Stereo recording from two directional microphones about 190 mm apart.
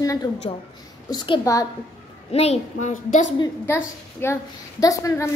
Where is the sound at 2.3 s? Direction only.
35° left (ahead or behind).